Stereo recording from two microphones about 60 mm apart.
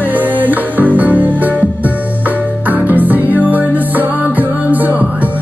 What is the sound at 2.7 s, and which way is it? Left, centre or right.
Music, right.